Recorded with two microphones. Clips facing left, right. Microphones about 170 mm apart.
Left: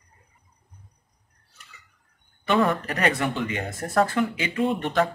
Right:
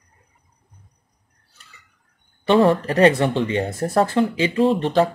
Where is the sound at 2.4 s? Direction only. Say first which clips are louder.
Right 7 dB; 30° right (ahead or behind).